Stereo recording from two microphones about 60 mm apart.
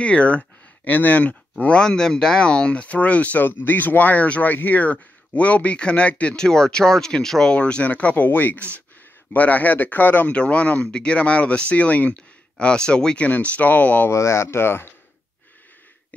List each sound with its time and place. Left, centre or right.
0.0 s speech: left
7.5 s speech: centre
8.5 s speech: right
9.3 s speech: left
10.3 s speech: centre
14.1 s speech: left